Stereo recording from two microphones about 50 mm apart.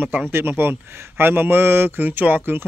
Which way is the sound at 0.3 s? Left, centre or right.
Right.